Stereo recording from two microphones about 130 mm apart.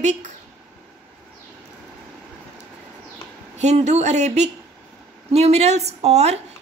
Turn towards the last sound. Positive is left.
turn(degrees=-55)  # may be behind; listen again after turning